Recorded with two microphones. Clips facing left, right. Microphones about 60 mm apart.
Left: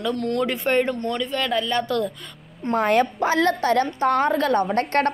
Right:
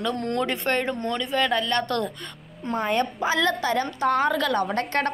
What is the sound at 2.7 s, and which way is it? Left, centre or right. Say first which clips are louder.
Speech: left 5 dB; left.